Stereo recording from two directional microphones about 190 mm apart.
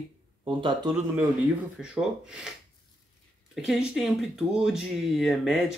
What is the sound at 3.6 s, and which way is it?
Speech, centre (ahead or behind).